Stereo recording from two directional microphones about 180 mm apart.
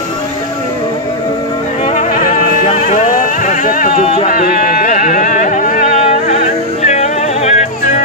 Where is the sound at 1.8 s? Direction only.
40° left (ahead or behind).